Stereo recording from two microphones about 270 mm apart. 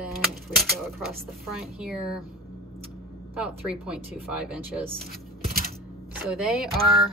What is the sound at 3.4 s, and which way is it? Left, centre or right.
Speech, centre.